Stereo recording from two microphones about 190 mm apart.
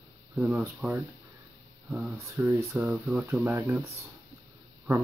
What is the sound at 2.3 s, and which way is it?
Speech, 15° right (ahead or behind).